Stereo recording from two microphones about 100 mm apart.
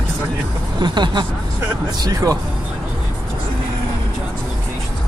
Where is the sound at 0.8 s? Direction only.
50° right (ahead or behind).